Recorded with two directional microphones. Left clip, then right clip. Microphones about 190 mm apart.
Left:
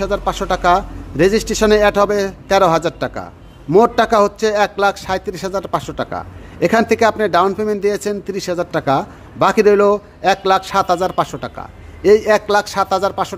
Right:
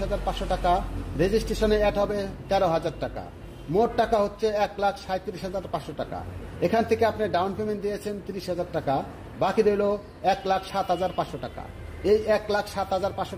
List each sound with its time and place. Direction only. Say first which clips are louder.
0.0 s a man's voice: left 10 dB; 40° left (ahead or behind)